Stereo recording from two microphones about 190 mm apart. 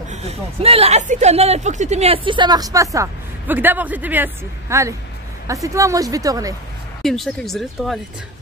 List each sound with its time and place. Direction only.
0.1 s a woman's voice: 35° right (ahead or behind); by 6.5 s 20° right (ahead or behind)
7.0 s speech: centre (ahead or behind)